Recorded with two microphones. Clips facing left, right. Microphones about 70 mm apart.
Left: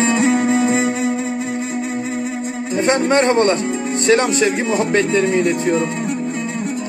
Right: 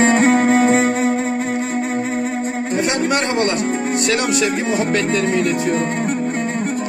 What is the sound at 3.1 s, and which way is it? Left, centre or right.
Speech, left.